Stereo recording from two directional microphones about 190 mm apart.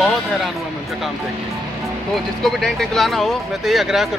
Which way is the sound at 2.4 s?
Centre (ahead or behind).